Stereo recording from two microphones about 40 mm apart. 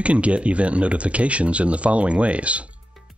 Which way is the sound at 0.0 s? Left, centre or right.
Right.